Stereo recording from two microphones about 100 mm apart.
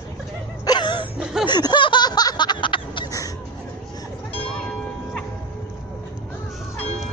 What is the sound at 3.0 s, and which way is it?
Bird, 35° left (ahead or behind).